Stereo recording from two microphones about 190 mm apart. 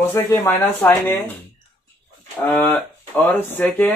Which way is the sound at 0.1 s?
15° left (ahead or behind).